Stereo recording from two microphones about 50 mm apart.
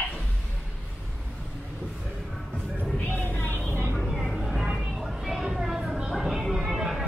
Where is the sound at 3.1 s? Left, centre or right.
Left.